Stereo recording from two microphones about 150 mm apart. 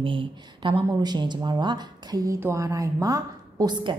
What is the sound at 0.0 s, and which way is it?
A woman's voice, 35° right (ahead or behind).